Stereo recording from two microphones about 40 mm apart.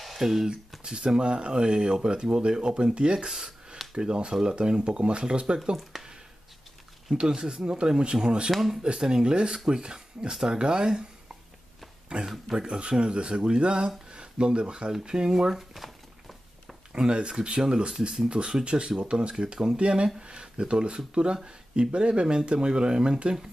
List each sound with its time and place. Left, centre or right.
0.0 s a sound: centre
0.8 s speech: right
5.9 s a sound: centre
7.2 s speech: centre
8.5 s speech: centre
8.8 s speech: centre
12.5 s speech: right; by 16.7 s centre
16.9 s speech: right